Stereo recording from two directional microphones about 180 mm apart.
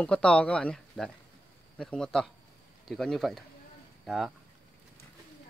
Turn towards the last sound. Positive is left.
turn(degrees=0)  # may be behind; listen again after turning